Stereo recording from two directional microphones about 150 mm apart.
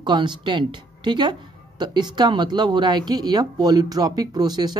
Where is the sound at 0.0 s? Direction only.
30° right (ahead or behind).